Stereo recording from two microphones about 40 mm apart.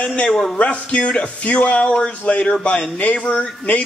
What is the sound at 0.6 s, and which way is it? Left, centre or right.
A man's voice, left.